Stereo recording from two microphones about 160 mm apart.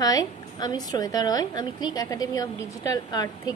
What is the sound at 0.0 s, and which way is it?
A woman's voice, 25° left (ahead or behind).